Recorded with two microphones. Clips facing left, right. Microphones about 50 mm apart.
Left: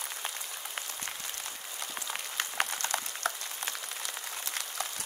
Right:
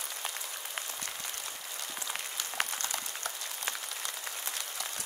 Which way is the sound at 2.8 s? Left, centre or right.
Left.